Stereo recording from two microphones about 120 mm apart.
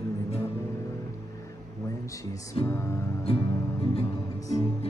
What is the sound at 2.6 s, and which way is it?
Music, 50° left (ahead or behind).